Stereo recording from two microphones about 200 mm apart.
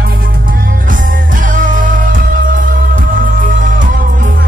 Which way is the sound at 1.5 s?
40° right (ahead or behind).